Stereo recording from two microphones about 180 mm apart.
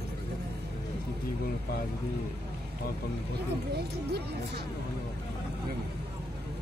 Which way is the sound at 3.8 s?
65° right (ahead or behind).